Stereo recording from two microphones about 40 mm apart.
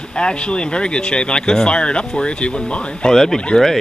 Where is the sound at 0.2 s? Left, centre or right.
Left.